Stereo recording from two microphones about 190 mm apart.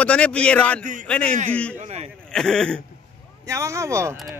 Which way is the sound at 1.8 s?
35° right (ahead or behind).